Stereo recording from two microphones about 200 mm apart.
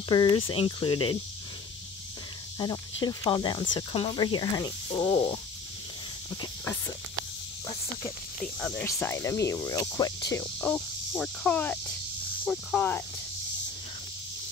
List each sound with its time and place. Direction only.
0.1 s speech: 20° left (ahead or behind)
2.6 s speech: 20° left (ahead or behind)
6.4 s speech: 10° left (ahead or behind)
8.5 s speech: 10° left (ahead or behind)